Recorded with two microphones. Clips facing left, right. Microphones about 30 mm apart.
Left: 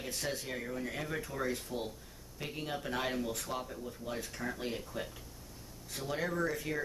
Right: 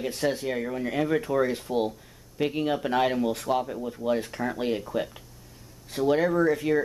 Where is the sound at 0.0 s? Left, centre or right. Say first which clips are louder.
Right 11 dB; right.